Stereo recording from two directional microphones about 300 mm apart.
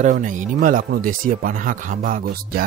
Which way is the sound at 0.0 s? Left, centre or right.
Right.